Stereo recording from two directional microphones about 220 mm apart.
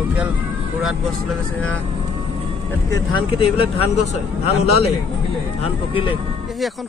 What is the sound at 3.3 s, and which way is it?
A man's voice, 25° left (ahead or behind).